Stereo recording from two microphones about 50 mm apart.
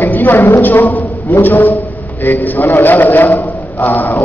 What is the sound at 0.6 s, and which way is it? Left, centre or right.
A man's voice, left.